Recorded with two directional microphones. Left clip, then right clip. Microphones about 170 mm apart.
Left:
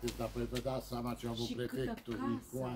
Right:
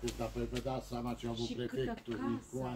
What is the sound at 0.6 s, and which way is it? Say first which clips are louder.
Speech: even; 90° left.